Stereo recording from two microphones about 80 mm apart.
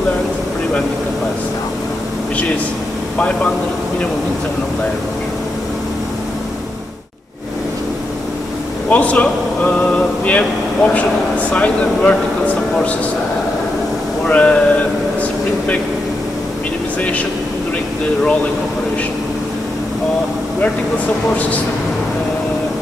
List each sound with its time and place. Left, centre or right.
8.8 s a man's voice: centre
9.9 s air conditioning: centre
11.5 s speech: centre
14.2 s speech: centre